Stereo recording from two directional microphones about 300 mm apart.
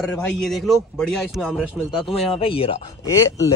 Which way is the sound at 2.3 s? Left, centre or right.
Centre.